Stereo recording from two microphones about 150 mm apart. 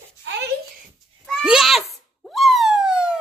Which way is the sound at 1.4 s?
5° right (ahead or behind).